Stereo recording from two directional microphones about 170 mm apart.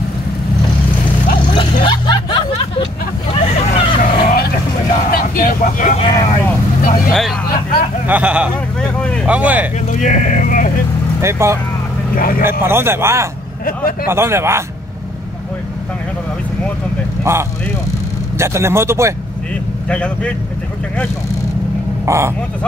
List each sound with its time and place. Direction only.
1.5 s vehicle: 30° left (ahead or behind)
3.3 s vehicle: 40° left (ahead or behind); by 4.5 s 55° left (ahead or behind)
5.1 s speech: 55° left (ahead or behind)
5.9 s speech: 30° left (ahead or behind)
7.1 s a man's voice: centre (ahead or behind)
9.8 s speech: 50° left (ahead or behind)
11.1 s a man's voice: 15° right (ahead or behind)
12.2 s speech: 55° left (ahead or behind)
12.4 s a man's voice: 15° right (ahead or behind)
17.2 s a man's voice: 15° right (ahead or behind)
19.9 s speech: 5° left (ahead or behind)
22.0 s speech: 15° right (ahead or behind)